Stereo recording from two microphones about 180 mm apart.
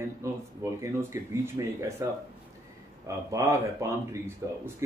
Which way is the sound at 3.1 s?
15° right (ahead or behind).